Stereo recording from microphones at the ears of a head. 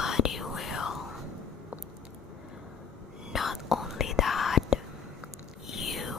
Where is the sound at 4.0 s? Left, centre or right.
Left.